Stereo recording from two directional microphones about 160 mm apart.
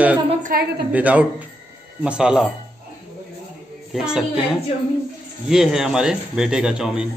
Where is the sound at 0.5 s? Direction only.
65° right (ahead or behind).